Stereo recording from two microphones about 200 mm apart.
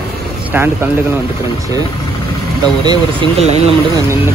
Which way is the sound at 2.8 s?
25° right (ahead or behind).